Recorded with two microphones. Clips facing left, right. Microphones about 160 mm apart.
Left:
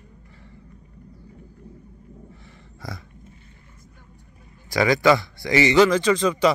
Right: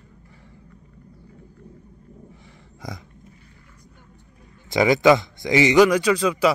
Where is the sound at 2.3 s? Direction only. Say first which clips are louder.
Left 1 dB; 15° right (ahead or behind).